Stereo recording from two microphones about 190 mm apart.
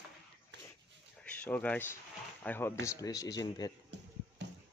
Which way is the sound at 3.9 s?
65° right (ahead or behind).